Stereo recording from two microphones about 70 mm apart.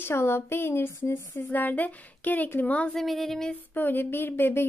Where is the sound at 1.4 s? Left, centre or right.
Left.